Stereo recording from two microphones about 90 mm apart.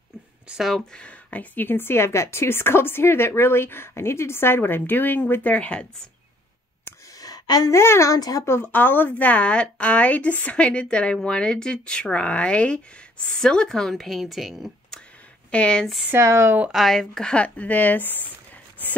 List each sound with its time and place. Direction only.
0.5 s a woman's voice: centre (ahead or behind)
7.2 s a sound: 45° left (ahead or behind)
7.7 s a woman's voice: 30° left (ahead or behind)
8.5 s a woman's voice: 25° left (ahead or behind); by 15.0 s centre (ahead or behind)
15.5 s a woman's voice: 10° left (ahead or behind)
16.1 s speech: 30° right (ahead or behind)
16.7 s a woman's voice: 5° left (ahead or behind); by 18.2 s 20° left (ahead or behind)